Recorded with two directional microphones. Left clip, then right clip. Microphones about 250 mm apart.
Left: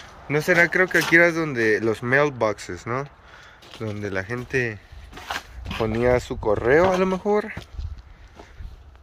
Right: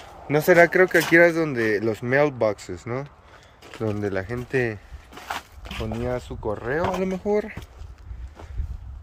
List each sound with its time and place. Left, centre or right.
0.3 s speech: centre
5.7 s speech: centre
7.0 s speech: centre